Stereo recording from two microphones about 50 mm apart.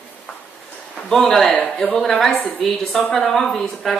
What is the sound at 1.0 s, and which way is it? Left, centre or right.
Speech, centre.